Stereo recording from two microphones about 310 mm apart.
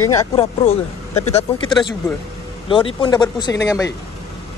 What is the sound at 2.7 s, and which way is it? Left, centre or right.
Speech, centre.